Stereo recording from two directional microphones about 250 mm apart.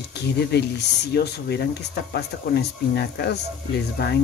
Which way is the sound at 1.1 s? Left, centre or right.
Left.